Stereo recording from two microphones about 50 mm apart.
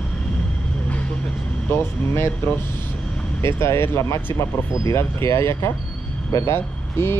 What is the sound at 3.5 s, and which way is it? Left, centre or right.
Speech, left.